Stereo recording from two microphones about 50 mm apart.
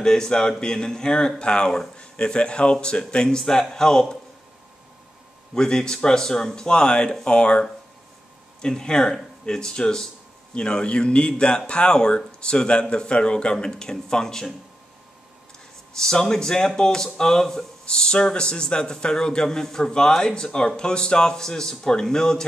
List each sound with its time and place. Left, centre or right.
0.0 s speech: centre
5.5 s speech: centre
16.0 s speech: centre